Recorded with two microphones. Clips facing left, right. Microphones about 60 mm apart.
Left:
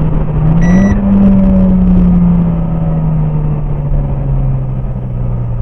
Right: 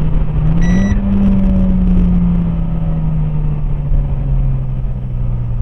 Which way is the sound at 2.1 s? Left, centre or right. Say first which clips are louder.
Left 5 dB; centre.